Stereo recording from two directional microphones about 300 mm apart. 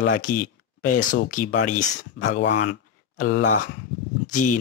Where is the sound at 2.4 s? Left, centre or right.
Left.